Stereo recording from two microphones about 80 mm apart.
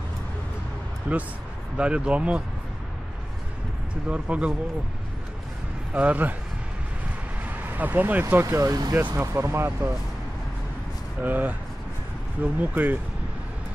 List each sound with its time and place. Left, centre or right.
1.1 s speech: centre
4.1 s speech: centre
5.9 s speech: centre
7.4 s speech: right
8.5 s speech: right
8.9 s speech: right
11.1 s speech: right
12.5 s speech: right